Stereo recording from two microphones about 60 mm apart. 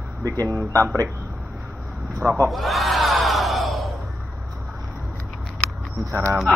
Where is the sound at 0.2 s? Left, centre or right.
Right.